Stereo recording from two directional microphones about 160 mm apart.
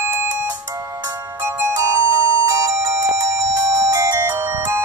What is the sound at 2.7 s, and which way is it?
Ringtone, 20° right (ahead or behind).